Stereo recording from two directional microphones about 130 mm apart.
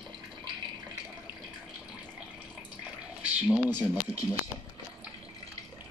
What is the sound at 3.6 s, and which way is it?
Speech, 30° left (ahead or behind).